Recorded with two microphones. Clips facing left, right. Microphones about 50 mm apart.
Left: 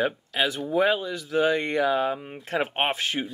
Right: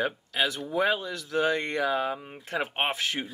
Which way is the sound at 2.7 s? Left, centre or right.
Left.